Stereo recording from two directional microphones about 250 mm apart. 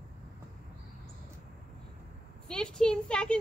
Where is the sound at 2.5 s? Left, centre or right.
Centre.